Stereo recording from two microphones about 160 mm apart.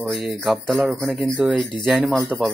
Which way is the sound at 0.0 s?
Centre (ahead or behind).